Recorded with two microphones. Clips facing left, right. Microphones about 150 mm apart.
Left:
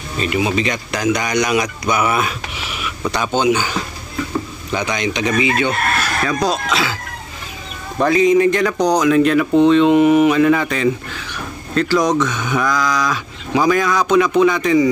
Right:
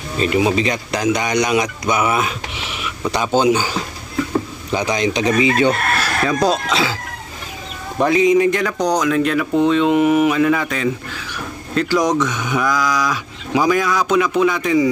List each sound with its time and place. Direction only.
0.2 s speech: 30° right (ahead or behind)
4.7 s speech: 30° right (ahead or behind)
8.0 s speech: 15° right (ahead or behind); by 10.9 s centre (ahead or behind)
11.7 s speech: 10° right (ahead or behind)